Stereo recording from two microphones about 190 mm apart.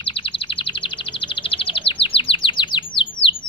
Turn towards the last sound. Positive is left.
turn(degrees=25)  # may be behind; listen again after turning